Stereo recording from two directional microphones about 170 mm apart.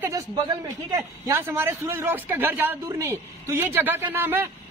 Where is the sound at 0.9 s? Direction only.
15° right (ahead or behind).